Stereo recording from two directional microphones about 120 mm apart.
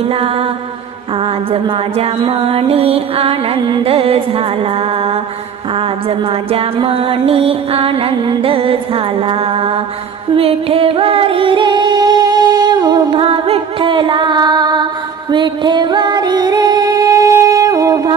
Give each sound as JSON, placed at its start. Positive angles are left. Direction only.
{"t": 0.1, "sound": "music", "side_deg": -55}
{"t": 13.1, "sound": "music", "side_deg": -50}